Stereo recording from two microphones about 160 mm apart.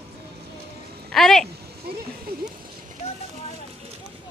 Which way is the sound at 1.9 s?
80° right.